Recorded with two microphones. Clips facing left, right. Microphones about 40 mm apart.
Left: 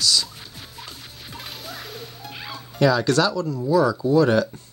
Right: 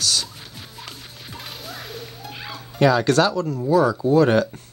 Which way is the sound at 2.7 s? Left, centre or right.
Right.